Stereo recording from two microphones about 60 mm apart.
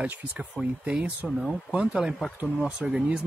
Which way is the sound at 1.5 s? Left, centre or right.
Centre.